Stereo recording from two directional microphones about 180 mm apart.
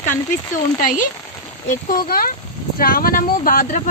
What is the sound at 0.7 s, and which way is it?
Speech, 50° left (ahead or behind).